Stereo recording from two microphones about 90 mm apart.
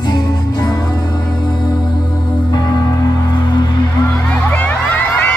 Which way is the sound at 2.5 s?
50° left (ahead or behind).